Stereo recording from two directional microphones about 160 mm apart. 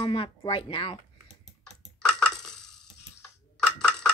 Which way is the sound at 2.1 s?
5° left (ahead or behind).